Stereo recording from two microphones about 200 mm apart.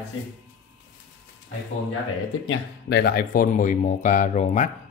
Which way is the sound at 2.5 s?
55° left (ahead or behind).